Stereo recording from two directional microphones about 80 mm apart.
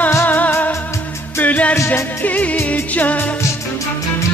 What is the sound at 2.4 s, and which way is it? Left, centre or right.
Music, centre.